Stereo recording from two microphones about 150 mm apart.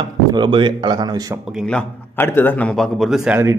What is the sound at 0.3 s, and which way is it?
Speech, 30° right (ahead or behind).